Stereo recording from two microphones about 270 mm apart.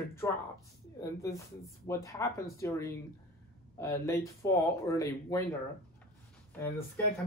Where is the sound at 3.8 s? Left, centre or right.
Centre.